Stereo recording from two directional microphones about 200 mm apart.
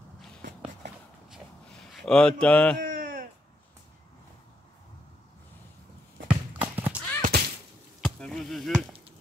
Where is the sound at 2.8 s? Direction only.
45° right (ahead or behind).